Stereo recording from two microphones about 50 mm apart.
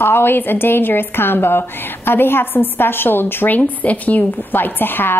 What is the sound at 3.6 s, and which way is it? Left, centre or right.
A woman's voice, left.